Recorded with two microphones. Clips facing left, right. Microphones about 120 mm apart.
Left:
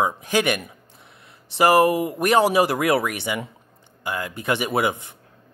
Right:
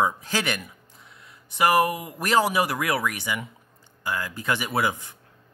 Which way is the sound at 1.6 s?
30° left (ahead or behind).